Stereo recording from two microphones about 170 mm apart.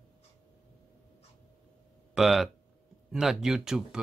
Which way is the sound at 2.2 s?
Centre (ahead or behind).